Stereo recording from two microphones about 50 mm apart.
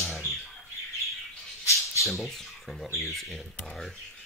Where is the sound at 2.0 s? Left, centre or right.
Centre.